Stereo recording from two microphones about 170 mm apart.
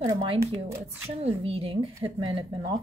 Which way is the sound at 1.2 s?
35° right (ahead or behind).